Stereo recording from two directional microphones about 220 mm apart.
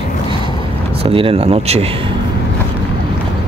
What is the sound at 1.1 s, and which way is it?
Speech, 25° right (ahead or behind).